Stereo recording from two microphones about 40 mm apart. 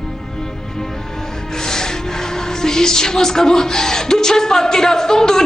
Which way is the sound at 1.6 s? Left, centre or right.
Centre.